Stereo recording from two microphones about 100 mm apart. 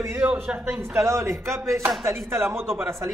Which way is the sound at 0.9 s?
30° right (ahead or behind).